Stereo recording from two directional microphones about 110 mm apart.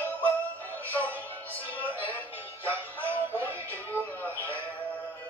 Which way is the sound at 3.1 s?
20° right (ahead or behind).